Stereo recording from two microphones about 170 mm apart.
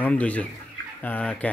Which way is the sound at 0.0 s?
10° left (ahead or behind).